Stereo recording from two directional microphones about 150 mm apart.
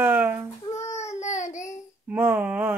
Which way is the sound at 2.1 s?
10° right (ahead or behind).